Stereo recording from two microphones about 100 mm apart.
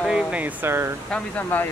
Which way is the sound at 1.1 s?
15° left (ahead or behind).